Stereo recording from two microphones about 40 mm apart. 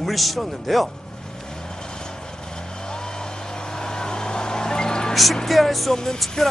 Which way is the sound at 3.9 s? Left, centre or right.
Centre.